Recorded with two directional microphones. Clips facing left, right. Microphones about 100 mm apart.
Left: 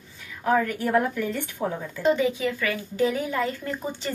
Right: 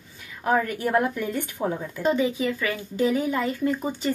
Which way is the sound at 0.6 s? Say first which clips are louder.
Even; 20° right (ahead or behind).